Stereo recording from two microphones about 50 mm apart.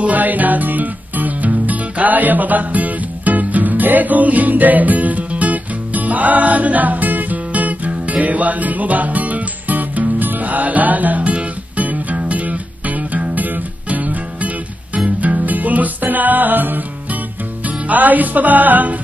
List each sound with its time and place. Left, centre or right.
0.0 s music: right